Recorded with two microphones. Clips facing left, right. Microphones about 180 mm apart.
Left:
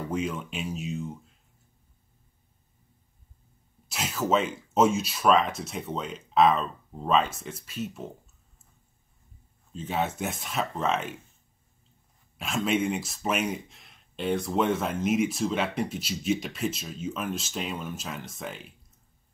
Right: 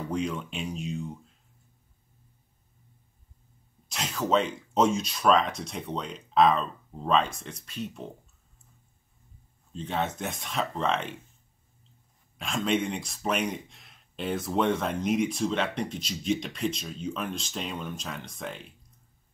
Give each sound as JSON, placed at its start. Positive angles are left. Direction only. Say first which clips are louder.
{"t": 0.1, "sound": "speech", "louder": "right 1 dB", "side_deg": 5}
{"t": 3.9, "sound": "speech", "louder": "even", "side_deg": 5}
{"t": 9.8, "sound": "speech", "louder": "left 1 dB", "side_deg": 5}
{"t": 12.4, "sound": "speech", "louder": "left 1 dB", "side_deg": 5}